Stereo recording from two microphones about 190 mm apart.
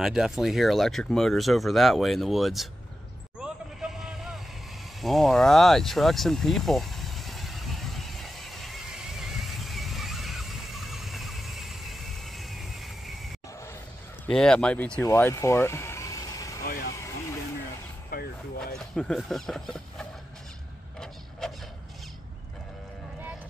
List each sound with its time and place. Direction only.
0.0 s speech: 5° right (ahead or behind)
3.3 s vehicle: 5° right (ahead or behind)
5.0 s a sound: centre (ahead or behind)
14.2 s speech: 5° left (ahead or behind)
15.0 s vehicle: 10° left (ahead or behind)
16.6 s speech: 50° left (ahead or behind)
16.9 s vehicle: 15° left (ahead or behind)
18.1 s a sound: 55° left (ahead or behind)
18.8 s speech: 5° left (ahead or behind)
21.0 s a sound: centre (ahead or behind)